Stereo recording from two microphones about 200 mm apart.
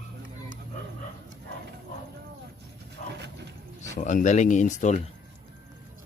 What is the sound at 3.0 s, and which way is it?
Wild animals, 40° left (ahead or behind).